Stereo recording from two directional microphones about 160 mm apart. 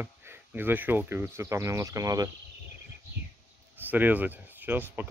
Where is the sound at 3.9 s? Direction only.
10° right (ahead or behind).